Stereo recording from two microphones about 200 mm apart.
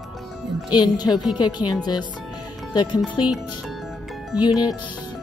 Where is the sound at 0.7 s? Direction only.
20° left (ahead or behind).